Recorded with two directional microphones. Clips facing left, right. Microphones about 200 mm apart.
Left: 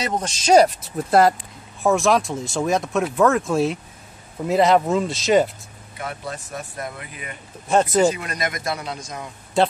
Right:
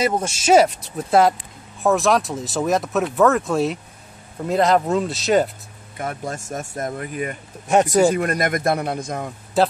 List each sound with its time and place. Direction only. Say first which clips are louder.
0.0 s speech: right 4 dB; 10° right (ahead or behind)
5.9 s speech: right 3 dB; 45° right (ahead or behind)
7.6 s speech: right 2 dB; 15° right (ahead or behind)
8.1 s speech: right 6 dB; 55° right (ahead or behind)
9.6 s speech: right 1 dB; 5° right (ahead or behind)